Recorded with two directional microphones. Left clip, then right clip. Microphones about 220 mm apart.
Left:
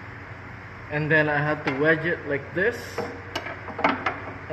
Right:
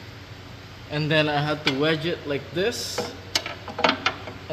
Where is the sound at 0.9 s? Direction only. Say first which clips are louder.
Left 1 dB; 85° right.